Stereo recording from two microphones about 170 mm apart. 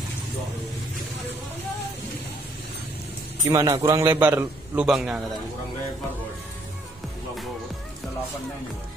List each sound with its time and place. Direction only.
3.4 s a man's voice: 20° right (ahead or behind); by 5.2 s centre (ahead or behind)